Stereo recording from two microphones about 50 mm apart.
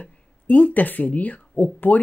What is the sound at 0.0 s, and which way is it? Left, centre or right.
Speech, left.